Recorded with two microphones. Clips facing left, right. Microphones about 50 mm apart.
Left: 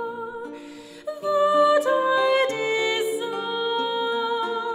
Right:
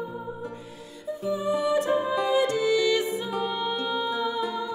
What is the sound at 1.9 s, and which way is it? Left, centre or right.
Music, left.